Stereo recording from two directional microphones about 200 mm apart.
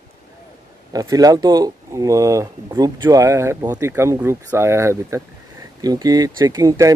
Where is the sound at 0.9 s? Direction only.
20° right (ahead or behind).